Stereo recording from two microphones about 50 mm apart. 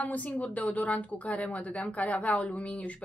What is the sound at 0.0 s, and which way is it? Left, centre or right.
A woman's voice, left.